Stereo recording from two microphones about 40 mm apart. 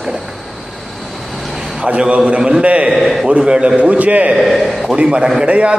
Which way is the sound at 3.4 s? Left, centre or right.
Centre.